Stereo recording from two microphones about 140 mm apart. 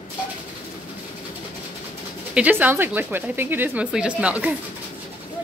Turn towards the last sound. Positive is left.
turn(degrees=-10)  # may be behind; listen again after turning